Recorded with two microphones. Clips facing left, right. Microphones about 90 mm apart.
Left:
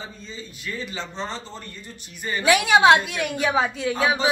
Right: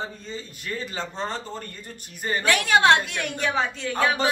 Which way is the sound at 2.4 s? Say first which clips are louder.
Left 4 dB; 10° left (ahead or behind).